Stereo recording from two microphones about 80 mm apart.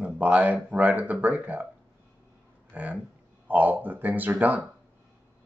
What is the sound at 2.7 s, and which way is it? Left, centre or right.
Speech, centre.